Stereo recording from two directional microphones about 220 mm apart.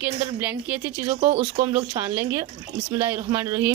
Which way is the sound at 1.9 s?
10° right (ahead or behind).